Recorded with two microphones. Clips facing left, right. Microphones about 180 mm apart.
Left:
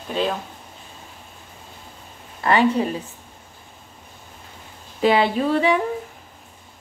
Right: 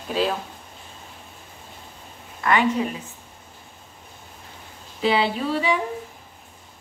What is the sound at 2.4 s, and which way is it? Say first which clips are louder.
Speech: left 3 dB; 35° left (ahead or behind).